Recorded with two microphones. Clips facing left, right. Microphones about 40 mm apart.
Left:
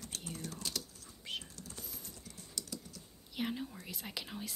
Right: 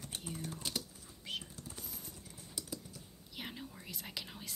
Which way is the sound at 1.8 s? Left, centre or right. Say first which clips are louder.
Even; centre.